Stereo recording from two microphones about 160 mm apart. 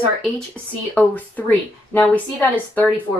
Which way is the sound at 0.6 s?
5° left (ahead or behind).